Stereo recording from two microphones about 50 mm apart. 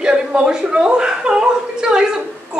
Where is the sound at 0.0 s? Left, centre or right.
Centre.